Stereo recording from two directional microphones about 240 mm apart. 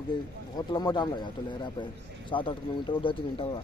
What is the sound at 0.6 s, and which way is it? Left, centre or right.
Speech, centre.